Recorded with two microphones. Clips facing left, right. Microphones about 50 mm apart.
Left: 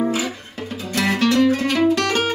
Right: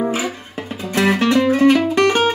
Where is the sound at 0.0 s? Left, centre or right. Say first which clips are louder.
Right 1 dB; right.